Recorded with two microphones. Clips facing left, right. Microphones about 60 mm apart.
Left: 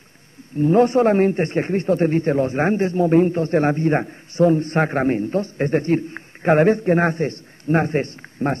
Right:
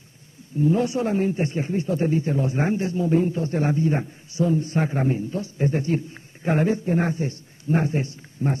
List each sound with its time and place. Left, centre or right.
0.6 s speech: left